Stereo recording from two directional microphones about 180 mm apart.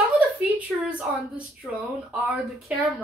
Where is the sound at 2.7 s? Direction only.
Centre (ahead or behind).